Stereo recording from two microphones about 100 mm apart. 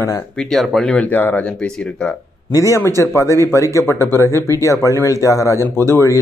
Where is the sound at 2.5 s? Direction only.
30° left (ahead or behind).